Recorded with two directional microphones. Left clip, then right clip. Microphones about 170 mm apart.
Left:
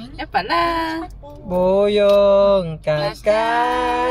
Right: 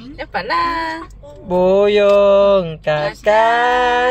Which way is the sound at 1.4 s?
25° right (ahead or behind).